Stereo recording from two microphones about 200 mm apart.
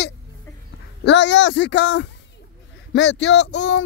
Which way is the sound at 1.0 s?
60° left (ahead or behind).